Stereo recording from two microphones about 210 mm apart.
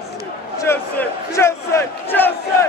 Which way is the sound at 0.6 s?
15° left (ahead or behind).